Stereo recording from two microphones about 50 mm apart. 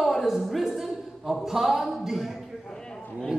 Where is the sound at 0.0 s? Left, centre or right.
Centre.